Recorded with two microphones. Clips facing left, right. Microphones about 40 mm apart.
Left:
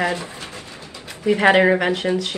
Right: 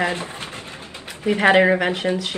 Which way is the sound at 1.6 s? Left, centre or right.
Centre.